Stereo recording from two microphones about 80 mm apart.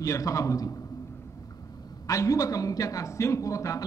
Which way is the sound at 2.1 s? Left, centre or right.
Left.